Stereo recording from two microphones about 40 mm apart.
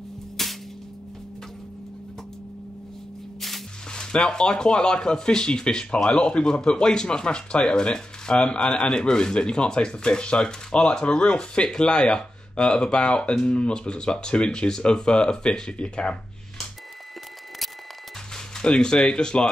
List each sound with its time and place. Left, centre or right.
0.4 s whip: centre
3.3 s music: centre
3.9 s speech: centre
18.3 s speech: centre